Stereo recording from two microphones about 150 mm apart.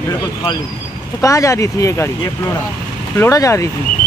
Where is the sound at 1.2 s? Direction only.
20° left (ahead or behind).